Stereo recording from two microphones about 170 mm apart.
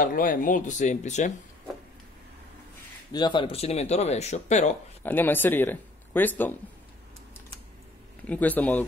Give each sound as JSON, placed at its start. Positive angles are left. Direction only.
{"t": 0.0, "sound": "speech", "side_deg": 55}
{"t": 3.1, "sound": "speech", "side_deg": 25}
{"t": 5.0, "sound": "speech", "side_deg": 10}
{"t": 8.3, "sound": "speech", "side_deg": 10}